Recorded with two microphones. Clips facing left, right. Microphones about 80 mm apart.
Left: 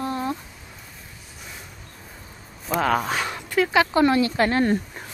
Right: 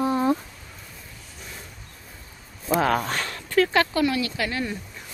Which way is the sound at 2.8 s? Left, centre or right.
Centre.